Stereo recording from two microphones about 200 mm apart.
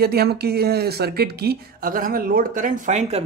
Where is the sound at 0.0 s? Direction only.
50° right (ahead or behind).